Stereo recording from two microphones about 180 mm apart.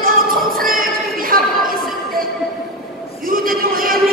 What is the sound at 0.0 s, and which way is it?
Music, 50° right (ahead or behind).